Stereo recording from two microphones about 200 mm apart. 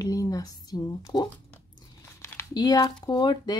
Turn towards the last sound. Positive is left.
turn(degrees=20)  # may be behind; listen again after turning